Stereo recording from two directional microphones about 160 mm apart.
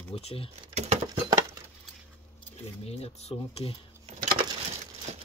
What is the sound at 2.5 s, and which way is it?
Speech, 40° left (ahead or behind).